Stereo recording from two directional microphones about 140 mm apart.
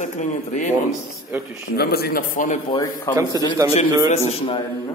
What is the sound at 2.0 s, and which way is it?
Speech, 80° left.